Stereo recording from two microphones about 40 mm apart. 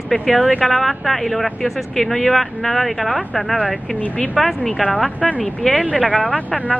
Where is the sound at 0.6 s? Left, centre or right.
Centre.